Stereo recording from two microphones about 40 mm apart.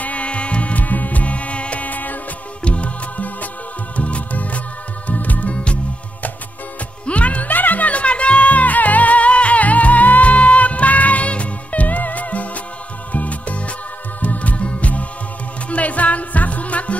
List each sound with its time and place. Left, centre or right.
0.0 s music: left
2.6 s music: left
7.1 s music: left